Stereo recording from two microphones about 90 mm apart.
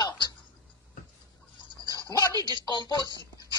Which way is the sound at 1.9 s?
40° right (ahead or behind).